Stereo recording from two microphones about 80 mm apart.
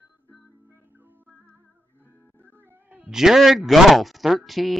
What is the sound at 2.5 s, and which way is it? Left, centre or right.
Music, right.